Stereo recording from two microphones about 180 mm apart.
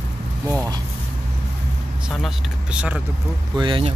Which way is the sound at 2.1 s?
5° right (ahead or behind).